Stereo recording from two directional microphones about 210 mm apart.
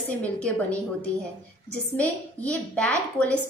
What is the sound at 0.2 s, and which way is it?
A woman's voice, 5° left (ahead or behind).